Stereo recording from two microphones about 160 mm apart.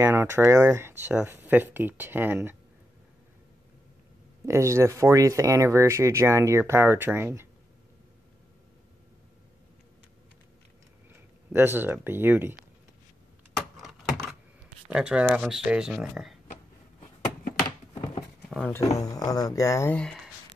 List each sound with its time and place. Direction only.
0.0 s speech: 15° right (ahead or behind)
4.5 s speech: 15° right (ahead or behind)
11.5 s speech: 15° right (ahead or behind)
14.9 s speech: 5° right (ahead or behind)
18.5 s speech: 10° left (ahead or behind)